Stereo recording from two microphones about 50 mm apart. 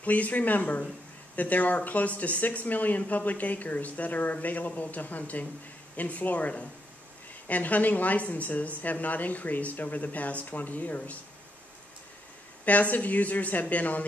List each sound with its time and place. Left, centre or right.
0.0 s speech: left
12.6 s speech: left